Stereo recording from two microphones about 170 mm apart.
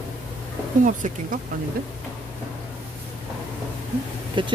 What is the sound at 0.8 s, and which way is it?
Speech, 50° right (ahead or behind).